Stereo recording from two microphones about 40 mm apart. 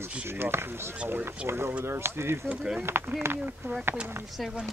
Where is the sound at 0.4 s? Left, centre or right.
Right.